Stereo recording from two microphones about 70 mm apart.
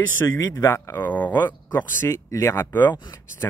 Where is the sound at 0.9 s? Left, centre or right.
Left.